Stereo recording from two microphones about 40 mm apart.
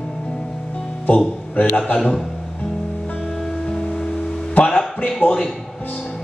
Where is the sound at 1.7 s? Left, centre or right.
Left.